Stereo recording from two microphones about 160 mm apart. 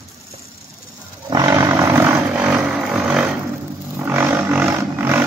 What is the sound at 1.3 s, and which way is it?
Vehicle, 20° right (ahead or behind).